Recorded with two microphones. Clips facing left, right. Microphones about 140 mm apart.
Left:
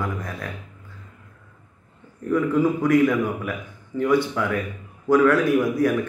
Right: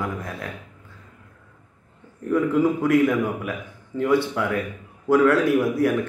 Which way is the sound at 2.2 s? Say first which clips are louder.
Even; 25° right (ahead or behind).